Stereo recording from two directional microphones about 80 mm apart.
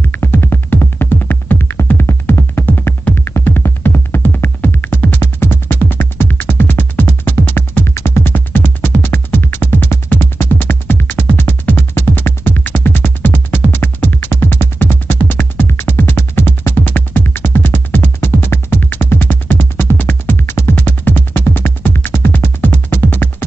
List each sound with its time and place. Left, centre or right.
0.0 s music: left